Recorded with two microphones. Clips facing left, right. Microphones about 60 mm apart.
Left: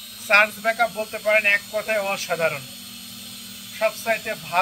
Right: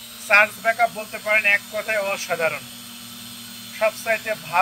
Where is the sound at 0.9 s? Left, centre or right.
Centre.